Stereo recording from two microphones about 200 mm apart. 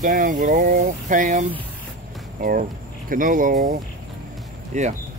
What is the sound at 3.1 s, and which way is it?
Speech, 45° right (ahead or behind).